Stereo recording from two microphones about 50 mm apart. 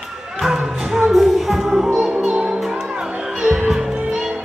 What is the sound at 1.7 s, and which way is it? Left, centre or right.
Music, centre.